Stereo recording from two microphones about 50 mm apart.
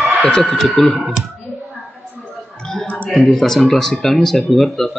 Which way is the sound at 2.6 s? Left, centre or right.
Centre.